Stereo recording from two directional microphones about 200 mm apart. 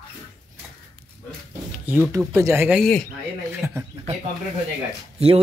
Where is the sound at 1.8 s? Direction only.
10° right (ahead or behind).